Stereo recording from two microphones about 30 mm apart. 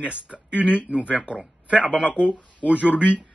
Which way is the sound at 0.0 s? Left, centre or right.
Right.